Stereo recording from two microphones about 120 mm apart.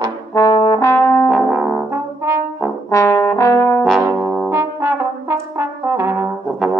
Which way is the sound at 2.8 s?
25° left (ahead or behind).